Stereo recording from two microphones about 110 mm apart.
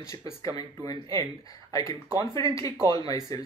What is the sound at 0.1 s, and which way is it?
Speech, 30° left (ahead or behind).